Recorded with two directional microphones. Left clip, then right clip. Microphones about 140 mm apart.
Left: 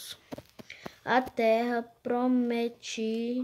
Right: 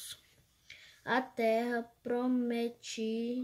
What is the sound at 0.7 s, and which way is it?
Speech, 15° right (ahead or behind).